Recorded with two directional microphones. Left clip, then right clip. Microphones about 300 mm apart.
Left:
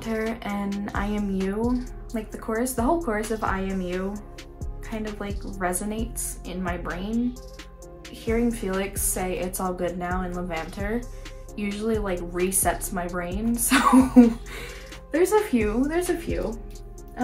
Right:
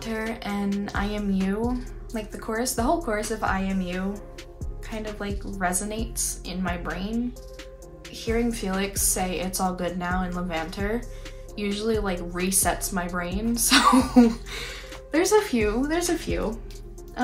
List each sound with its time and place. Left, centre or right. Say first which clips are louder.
0.0 s speech: left 2 dB; centre
8.3 s speech: left 1 dB; centre